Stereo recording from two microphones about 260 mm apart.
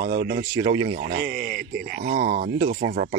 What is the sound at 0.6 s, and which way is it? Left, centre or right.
Speech, centre.